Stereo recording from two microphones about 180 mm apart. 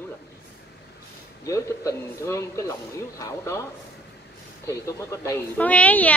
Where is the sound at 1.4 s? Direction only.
15° left (ahead or behind).